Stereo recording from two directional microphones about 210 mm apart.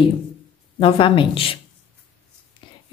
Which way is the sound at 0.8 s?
25° left (ahead or behind).